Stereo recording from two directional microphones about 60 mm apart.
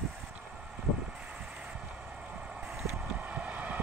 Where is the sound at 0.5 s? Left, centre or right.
Centre.